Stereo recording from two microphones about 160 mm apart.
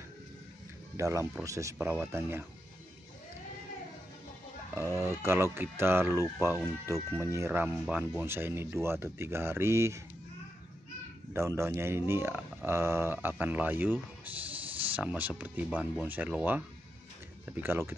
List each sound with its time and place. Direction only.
0.9 s speech: 15° right (ahead or behind)
4.7 s speech: 15° right (ahead or behind)
11.3 s speech: 15° right (ahead or behind)